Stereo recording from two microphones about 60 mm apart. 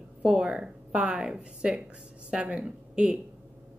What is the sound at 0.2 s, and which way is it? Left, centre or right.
A woman's voice, centre.